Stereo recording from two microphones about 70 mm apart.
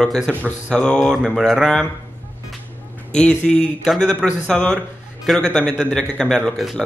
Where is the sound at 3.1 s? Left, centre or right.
Centre.